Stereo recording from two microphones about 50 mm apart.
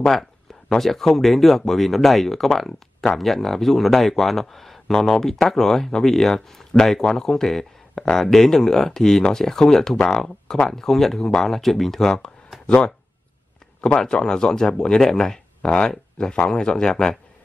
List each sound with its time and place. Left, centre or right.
0.7 s speech: centre
13.7 s speech: centre